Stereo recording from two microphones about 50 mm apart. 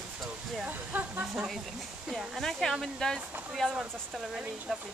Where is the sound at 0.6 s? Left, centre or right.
Right.